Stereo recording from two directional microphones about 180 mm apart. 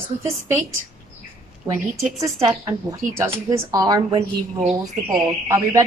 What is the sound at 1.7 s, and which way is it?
A woman's voice, 15° right (ahead or behind).